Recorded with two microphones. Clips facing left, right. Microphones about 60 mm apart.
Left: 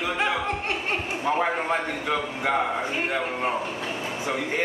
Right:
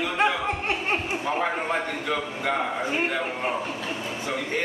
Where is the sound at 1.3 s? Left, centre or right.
Centre.